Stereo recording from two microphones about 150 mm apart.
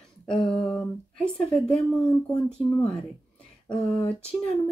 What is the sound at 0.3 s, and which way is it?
Speech, 5° left (ahead or behind).